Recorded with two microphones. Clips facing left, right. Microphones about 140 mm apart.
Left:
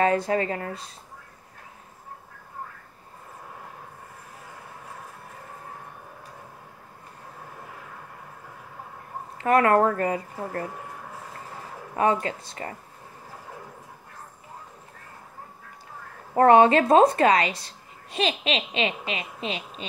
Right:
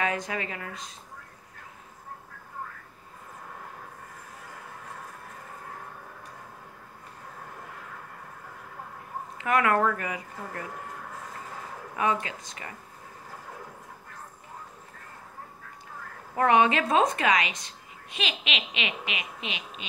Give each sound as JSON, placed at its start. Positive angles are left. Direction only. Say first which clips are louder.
{"t": 0.0, "sound": "a woman's voice", "louder": "left 8 dB", "side_deg": 35}
{"t": 9.4, "sound": "a woman's voice", "louder": "left 5 dB", "side_deg": 35}
{"t": 11.9, "sound": "a woman's voice", "louder": "left 5 dB", "side_deg": 35}
{"t": 16.3, "sound": "a woman's voice", "louder": "left 6 dB", "side_deg": 35}